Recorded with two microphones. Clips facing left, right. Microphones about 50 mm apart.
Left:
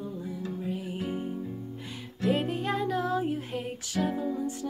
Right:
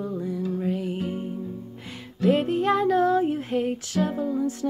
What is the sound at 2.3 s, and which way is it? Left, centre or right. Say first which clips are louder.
Music: right 7 dB; right.